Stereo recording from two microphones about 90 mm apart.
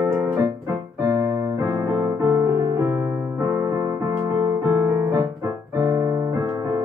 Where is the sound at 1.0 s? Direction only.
40° right (ahead or behind).